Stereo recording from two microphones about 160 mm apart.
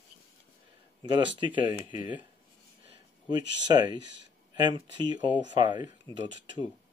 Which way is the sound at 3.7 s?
25° right (ahead or behind).